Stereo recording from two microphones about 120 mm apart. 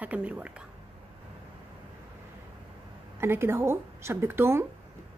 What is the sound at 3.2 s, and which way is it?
Speech, 20° right (ahead or behind).